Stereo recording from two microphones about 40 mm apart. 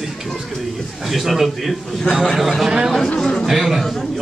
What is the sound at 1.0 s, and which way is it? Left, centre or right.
A man's voice, centre.